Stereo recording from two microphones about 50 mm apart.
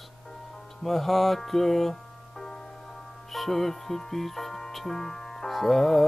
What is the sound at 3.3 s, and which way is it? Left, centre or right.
Music, centre.